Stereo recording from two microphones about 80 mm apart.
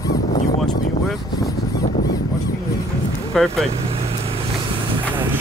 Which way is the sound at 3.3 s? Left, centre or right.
Centre.